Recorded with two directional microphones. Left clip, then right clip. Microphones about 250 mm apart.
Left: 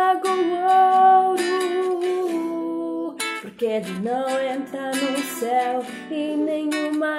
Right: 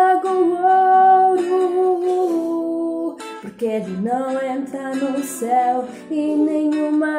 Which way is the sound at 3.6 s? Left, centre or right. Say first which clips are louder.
Right 2 dB; centre.